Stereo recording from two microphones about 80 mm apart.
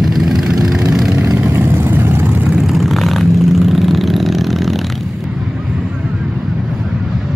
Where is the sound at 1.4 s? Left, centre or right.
Right.